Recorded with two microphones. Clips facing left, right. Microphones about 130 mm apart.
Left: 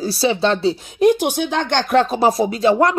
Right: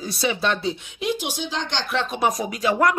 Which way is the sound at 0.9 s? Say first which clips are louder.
Left 11 dB; 50° left (ahead or behind).